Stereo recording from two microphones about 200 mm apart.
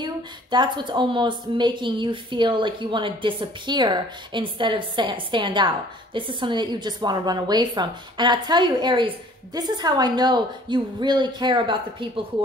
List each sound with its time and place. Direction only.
0.0 s a woman's voice: 25° right (ahead or behind)